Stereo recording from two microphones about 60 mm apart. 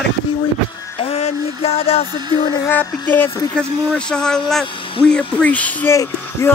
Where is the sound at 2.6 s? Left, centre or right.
Left.